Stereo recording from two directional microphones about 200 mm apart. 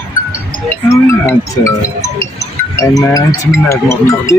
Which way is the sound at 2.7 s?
15° left (ahead or behind).